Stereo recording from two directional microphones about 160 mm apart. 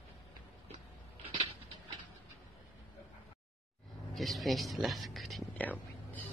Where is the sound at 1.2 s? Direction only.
40° right (ahead or behind).